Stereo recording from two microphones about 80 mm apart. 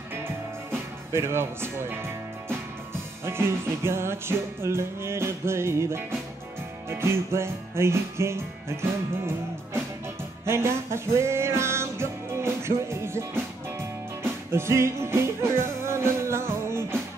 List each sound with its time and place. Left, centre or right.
0.7 s speech: right
3.3 s music: right
10.4 s music: right